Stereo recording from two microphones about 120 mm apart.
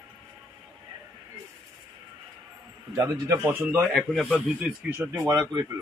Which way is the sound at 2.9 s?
20° right (ahead or behind).